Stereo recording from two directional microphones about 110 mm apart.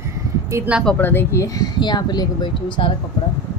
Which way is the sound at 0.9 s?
20° left (ahead or behind).